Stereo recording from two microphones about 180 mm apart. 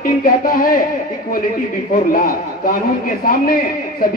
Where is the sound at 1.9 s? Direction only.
50° left (ahead or behind).